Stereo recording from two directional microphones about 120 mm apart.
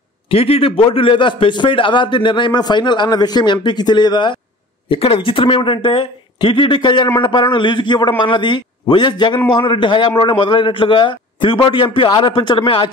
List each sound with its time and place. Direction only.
0.3 s a man's voice: 55° left (ahead or behind)
4.8 s a man's voice: 50° left (ahead or behind)